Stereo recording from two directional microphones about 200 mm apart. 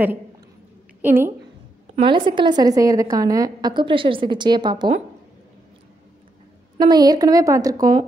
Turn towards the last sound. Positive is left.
turn(degrees=-20)  # may be behind; listen again after turning